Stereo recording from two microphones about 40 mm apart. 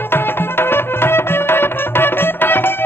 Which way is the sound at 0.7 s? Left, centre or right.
Left.